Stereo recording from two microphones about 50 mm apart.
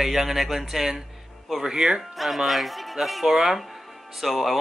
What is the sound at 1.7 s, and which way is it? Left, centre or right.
Speech, centre.